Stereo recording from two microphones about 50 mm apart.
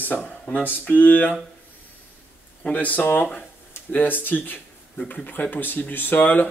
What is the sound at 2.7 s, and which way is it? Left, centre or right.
Speech, left.